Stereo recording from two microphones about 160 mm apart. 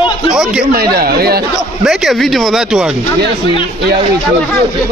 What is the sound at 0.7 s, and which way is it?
Speech, 70° right (ahead or behind).